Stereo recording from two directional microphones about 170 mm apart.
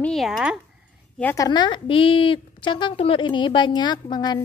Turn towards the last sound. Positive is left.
turn(degrees=25)  # may be behind; listen again after turning